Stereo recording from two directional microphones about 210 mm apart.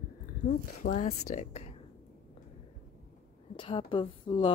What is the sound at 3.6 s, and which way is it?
Speech, 25° left (ahead or behind).